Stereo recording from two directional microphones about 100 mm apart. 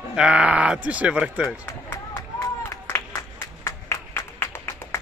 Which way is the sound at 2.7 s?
30° left (ahead or behind).